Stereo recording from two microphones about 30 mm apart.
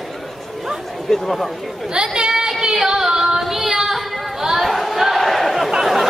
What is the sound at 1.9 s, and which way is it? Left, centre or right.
Female singing, right.